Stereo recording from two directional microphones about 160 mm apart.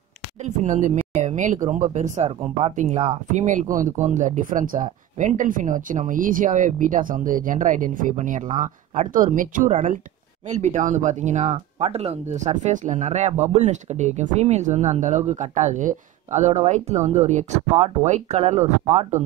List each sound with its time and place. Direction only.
0.6 s speech: 50° right (ahead or behind)